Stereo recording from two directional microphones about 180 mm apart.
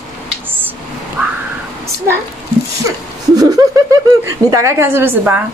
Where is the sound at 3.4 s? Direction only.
20° right (ahead or behind).